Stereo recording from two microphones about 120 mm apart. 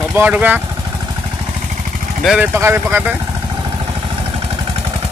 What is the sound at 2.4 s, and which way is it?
Speech, 20° right (ahead or behind).